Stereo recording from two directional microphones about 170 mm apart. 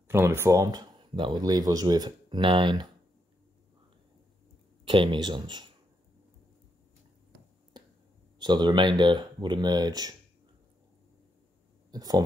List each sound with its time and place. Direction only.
0.1 s speech: 15° right (ahead or behind)
4.8 s speech: 30° right (ahead or behind)
7.7 s finger snapping: 25° right (ahead or behind)
8.4 s speech: 25° right (ahead or behind)
11.9 s speech: 25° right (ahead or behind)